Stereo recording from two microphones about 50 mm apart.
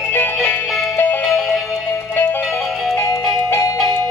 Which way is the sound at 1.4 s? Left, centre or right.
Centre.